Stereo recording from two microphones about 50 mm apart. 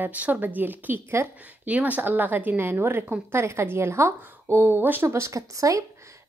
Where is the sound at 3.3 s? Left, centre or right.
Right.